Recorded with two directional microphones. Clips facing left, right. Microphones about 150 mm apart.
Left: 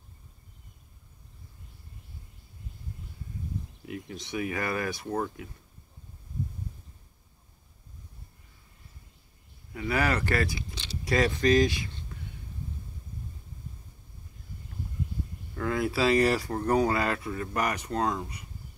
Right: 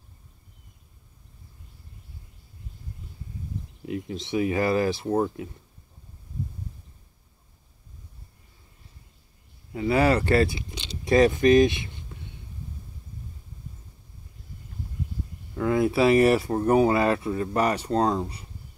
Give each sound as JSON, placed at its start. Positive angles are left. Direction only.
{"t": 3.8, "sound": "speech", "side_deg": -25}
{"t": 9.7, "sound": "speech", "side_deg": -25}
{"t": 15.5, "sound": "speech", "side_deg": -20}